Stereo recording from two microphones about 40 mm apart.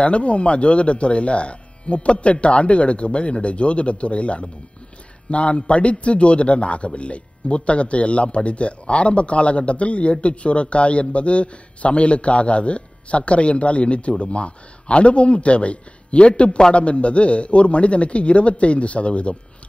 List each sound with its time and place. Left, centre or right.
0.0 s a man's voice: left